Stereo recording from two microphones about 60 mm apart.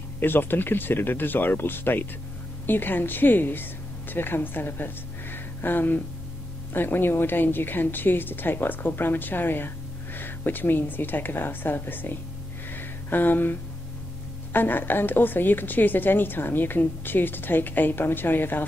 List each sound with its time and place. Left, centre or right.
0.2 s a woman's voice: left
12.7 s a sound: left
14.5 s a woman's voice: left